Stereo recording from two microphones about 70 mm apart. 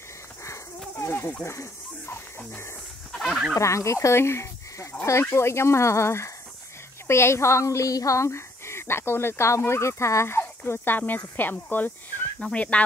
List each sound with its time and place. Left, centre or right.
0.9 s snake: left
3.1 s fowl: centre
3.5 s speech: left
12.4 s speech: centre